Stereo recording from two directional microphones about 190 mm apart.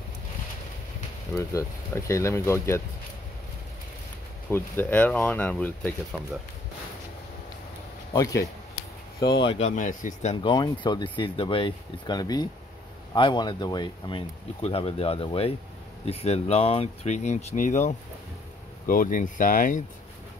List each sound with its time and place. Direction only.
1.3 s speech: 15° left (ahead or behind)
4.5 s speech: 10° left (ahead or behind)
8.1 s speech: 15° left (ahead or behind)
9.4 s speech: 30° left (ahead or behind)
10.4 s speech: 25° left (ahead or behind); by 19.8 s 45° left (ahead or behind)